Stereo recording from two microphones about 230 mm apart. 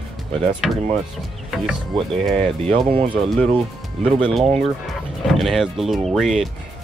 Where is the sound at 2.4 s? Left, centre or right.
Centre.